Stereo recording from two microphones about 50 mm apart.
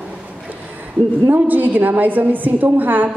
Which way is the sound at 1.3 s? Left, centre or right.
Right.